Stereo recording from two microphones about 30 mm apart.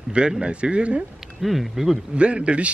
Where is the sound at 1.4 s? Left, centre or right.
Centre.